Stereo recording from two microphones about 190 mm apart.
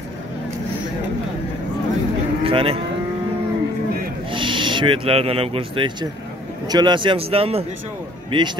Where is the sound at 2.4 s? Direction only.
30° right (ahead or behind).